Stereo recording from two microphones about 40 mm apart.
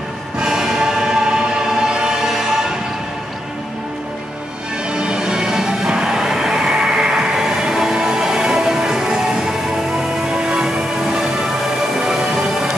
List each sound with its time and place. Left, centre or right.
0.4 s music: centre
4.9 s music: centre